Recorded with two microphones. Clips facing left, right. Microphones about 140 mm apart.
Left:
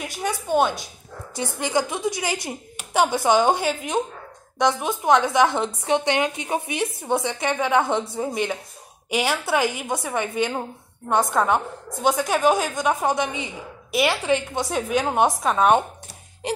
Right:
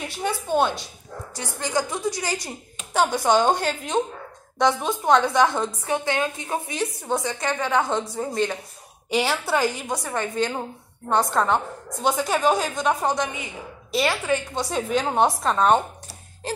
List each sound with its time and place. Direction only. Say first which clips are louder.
0.2 s a woman's voice: left 1 dB; centre (ahead or behind)
1.3 s a woman's voice: left 3 dB; 20° left (ahead or behind); by 5.3 s centre (ahead or behind)
5.3 s a woman's voice: left 1 dB; 15° left (ahead or behind)
13.2 s a woman's voice: left 2 dB; 25° left (ahead or behind)
14.7 s a woman's voice: even; 5° left (ahead or behind)